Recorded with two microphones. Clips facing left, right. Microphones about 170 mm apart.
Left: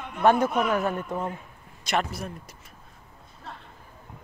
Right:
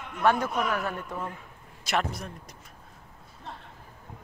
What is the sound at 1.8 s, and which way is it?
Speech, centre (ahead or behind).